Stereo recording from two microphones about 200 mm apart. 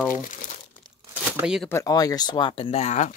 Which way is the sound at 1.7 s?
15° left (ahead or behind).